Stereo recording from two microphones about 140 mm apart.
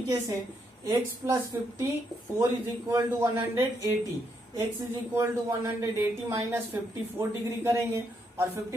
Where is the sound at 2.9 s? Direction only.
20° right (ahead or behind).